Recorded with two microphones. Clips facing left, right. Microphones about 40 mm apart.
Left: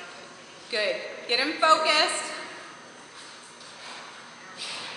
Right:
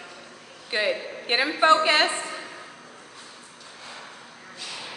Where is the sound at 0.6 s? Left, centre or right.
Right.